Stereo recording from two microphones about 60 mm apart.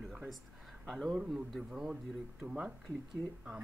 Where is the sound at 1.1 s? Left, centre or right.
Centre.